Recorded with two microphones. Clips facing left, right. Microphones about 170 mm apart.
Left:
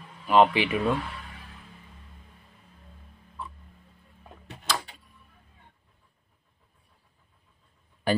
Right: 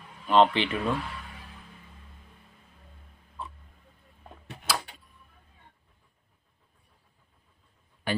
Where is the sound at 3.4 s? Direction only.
20° right (ahead or behind).